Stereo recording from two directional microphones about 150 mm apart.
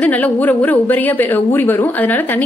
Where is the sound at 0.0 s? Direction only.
10° left (ahead or behind).